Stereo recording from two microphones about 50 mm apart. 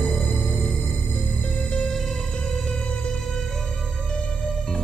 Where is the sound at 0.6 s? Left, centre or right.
Centre.